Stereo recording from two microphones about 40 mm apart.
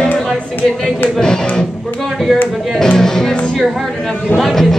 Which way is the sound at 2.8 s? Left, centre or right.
Centre.